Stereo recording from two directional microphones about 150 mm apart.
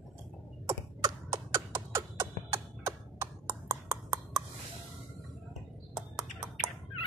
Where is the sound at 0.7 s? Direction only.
20° right (ahead or behind).